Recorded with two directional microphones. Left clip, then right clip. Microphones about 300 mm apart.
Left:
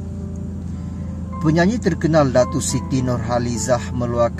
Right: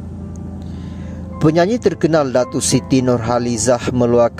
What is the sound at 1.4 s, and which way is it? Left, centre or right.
Speech, right.